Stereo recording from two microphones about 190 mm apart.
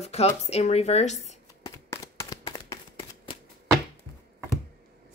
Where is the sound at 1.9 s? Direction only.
15° left (ahead or behind).